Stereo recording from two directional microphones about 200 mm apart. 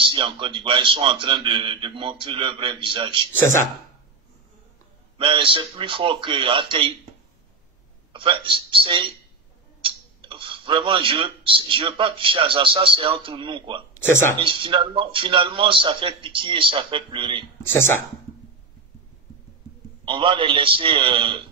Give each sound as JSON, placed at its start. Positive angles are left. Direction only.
{"t": 0.0, "sound": "a man's voice", "side_deg": -25}
{"t": 5.1, "sound": "a man's voice", "side_deg": -25}
{"t": 8.1, "sound": "a man's voice", "side_deg": -25}
{"t": 20.1, "sound": "a man's voice", "side_deg": -25}